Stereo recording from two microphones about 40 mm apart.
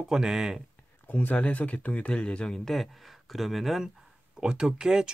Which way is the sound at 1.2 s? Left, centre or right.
Left.